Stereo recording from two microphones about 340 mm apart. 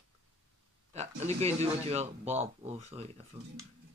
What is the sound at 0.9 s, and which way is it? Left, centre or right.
A man's voice, centre.